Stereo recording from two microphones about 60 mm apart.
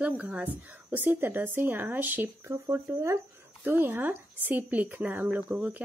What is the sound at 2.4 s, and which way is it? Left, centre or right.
Speech, right.